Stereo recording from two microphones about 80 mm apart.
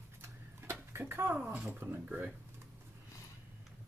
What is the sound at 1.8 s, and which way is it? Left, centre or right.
Speech, right.